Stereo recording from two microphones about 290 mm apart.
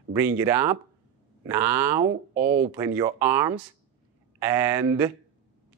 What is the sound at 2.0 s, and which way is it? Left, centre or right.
Speech, right.